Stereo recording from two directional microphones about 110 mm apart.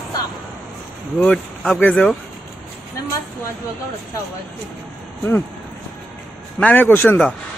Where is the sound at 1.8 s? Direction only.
15° left (ahead or behind).